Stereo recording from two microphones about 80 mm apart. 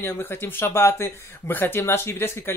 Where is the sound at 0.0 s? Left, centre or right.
Left.